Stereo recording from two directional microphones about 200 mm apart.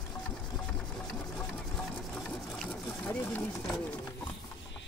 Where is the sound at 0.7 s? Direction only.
5° left (ahead or behind).